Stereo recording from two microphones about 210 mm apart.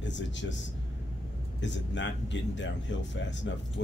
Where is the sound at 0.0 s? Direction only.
60° left (ahead or behind).